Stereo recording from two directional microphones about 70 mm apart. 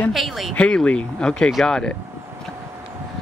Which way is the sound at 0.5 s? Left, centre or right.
Centre.